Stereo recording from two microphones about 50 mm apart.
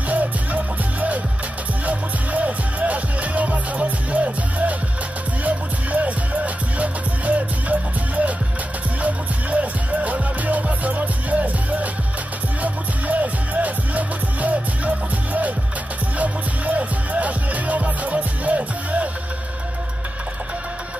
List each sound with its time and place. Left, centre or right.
0.1 s music: right
1.9 s music: right
9.0 s music: right